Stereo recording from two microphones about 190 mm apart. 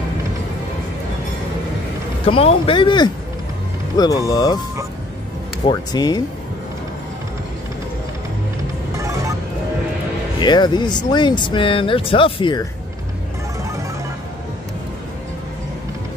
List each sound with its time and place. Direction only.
2.2 s speech: 30° left (ahead or behind)
5.7 s speech: 20° left (ahead or behind)
8.9 s music: 15° right (ahead or behind)
10.4 s speech: 25° left (ahead or behind)